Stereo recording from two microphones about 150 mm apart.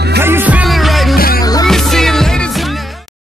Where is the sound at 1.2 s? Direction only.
80° left.